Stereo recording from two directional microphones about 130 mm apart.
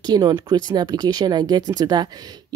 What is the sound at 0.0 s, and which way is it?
Speech, 30° right (ahead or behind).